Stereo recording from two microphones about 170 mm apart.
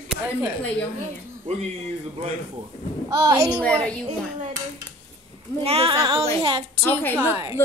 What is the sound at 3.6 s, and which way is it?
Speech, 5° left (ahead or behind).